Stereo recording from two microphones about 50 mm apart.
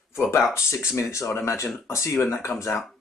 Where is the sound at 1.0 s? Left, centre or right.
Left.